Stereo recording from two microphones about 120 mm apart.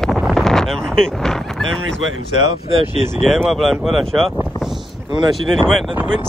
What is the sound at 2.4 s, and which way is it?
Speech, 50° right (ahead or behind).